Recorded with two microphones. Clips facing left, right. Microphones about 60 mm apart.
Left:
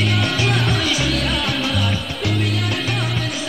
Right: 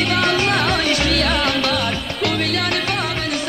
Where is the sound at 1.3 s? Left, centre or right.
Right.